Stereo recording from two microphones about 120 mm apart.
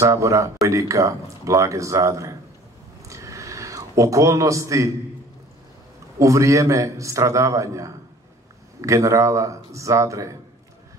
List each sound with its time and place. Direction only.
0.0 s speech: 25° right (ahead or behind)
3.0 s a sound: 25° right (ahead or behind)
6.1 s speech: 25° right (ahead or behind)